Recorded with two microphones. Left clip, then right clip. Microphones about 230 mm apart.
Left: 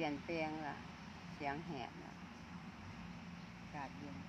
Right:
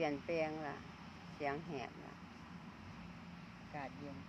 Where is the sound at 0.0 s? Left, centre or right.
Right.